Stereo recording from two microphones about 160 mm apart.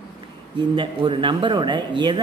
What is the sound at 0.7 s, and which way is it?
Speech, 30° right (ahead or behind).